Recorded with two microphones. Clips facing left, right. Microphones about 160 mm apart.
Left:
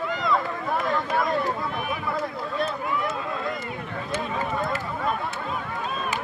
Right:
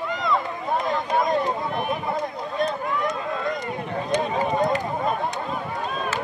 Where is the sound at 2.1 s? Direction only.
20° right (ahead or behind).